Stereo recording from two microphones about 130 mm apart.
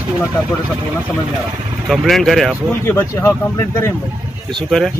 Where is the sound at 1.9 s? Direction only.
Centre (ahead or behind).